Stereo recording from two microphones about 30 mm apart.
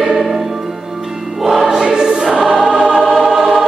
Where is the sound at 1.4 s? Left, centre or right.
Centre.